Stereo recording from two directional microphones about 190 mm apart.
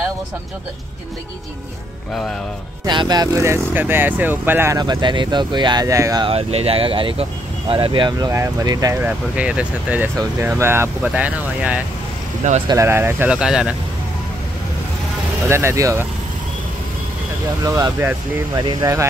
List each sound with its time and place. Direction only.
2.8 s speech: 25° right (ahead or behind)
6.2 s speech: 30° right (ahead or behind); by 13.7 s 5° right (ahead or behind)
15.4 s speech: 15° right (ahead or behind)
17.6 s speech: 15° right (ahead or behind)